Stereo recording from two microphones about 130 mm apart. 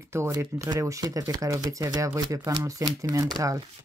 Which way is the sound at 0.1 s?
20° right (ahead or behind).